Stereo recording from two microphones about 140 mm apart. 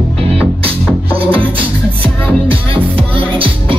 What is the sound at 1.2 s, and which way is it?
Music, 40° right (ahead or behind).